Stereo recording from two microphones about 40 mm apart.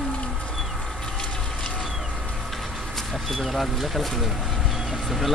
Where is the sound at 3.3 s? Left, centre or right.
Centre.